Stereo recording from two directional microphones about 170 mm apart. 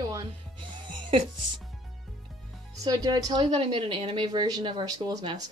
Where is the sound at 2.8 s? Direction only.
25° right (ahead or behind).